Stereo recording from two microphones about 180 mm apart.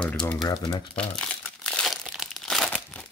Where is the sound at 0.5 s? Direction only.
25° left (ahead or behind).